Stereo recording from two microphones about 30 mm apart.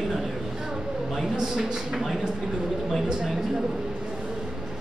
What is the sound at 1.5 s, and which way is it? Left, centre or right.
Speech, centre.